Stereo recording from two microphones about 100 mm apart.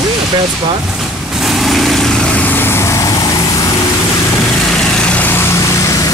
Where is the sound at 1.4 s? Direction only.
Centre (ahead or behind); by 3.1 s 30° left (ahead or behind).